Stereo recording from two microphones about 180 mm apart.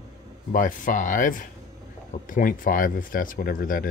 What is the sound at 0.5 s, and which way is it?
Speech, 45° left (ahead or behind).